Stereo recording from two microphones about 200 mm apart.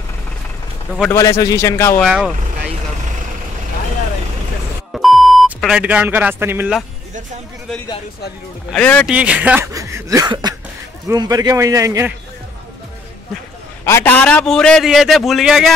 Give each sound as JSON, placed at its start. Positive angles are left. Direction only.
{"t": 1.1, "sound": "a man's voice", "side_deg": 15}
{"t": 2.0, "sound": "a man's voice", "side_deg": -5}
{"t": 4.9, "sound": "beep", "side_deg": 0}
{"t": 8.7, "sound": "a man's voice", "side_deg": 5}
{"t": 9.0, "sound": "speech", "side_deg": -5}
{"t": 13.8, "sound": "a man's voice", "side_deg": 10}